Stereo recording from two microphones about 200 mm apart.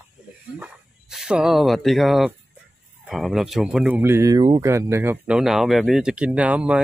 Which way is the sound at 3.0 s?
Centre (ahead or behind).